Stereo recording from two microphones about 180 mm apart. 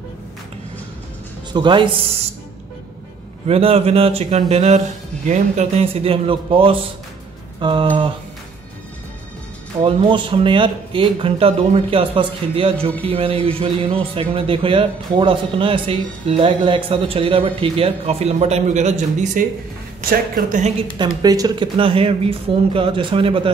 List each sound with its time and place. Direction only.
1.5 s speech: 25° right (ahead or behind)
3.4 s speech: 35° right (ahead or behind)
9.8 s speech: 25° right (ahead or behind)
20.1 s speech: 55° right (ahead or behind)
21.2 s speech: 20° right (ahead or behind)